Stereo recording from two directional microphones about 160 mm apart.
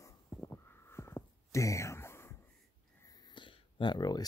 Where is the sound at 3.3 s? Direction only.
30° left (ahead or behind).